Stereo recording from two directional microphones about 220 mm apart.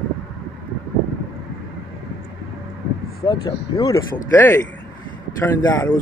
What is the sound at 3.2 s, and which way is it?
A man's voice, 20° left (ahead or behind).